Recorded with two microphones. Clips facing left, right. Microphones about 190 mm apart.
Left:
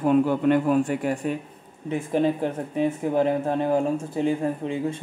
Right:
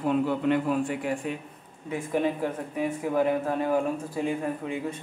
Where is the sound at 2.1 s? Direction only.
30° left (ahead or behind).